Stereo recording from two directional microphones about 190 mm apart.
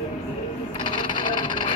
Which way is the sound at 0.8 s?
25° left (ahead or behind).